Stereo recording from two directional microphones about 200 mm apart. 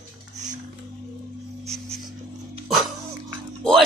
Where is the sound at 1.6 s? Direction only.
35° right (ahead or behind).